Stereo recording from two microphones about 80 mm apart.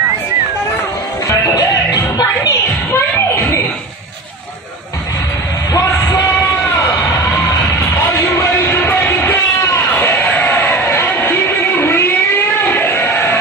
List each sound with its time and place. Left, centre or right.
1.4 s music: left
1.9 s music: left
2.9 s a sound: left
5.7 s music: left
8.4 s music: left
12.6 s a sound: left